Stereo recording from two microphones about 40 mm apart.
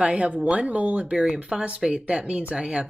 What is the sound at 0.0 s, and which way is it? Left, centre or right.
Speech, right.